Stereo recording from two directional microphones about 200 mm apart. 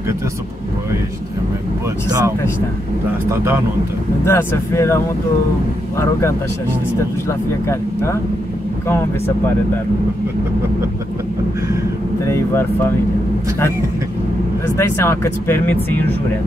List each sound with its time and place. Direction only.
2.0 s speech: 20° right (ahead or behind)
4.2 s speech: 10° left (ahead or behind)
7.6 s speech: 15° left (ahead or behind)
14.8 s speech: 15° left (ahead or behind)